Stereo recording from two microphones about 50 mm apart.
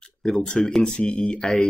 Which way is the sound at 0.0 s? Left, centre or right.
Centre.